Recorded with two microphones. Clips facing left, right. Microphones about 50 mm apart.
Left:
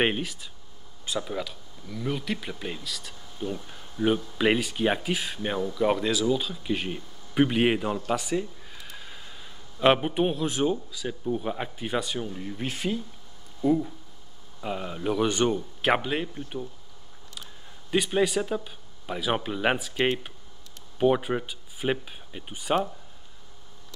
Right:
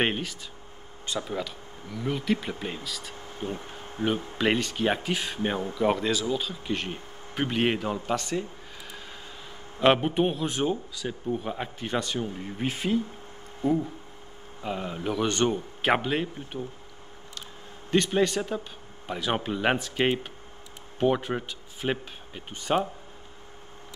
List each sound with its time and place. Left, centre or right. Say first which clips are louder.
0.0 s speech: left 1 dB; centre
3.2 s a sound: left 1 dB; right
4.4 s speech: left 1 dB; centre
8.8 s a sound: right 1 dB; centre
9.8 s speech: even; centre
13.6 s speech: left 2 dB; right
14.6 s speech: even; centre
17.9 s speech: even; centre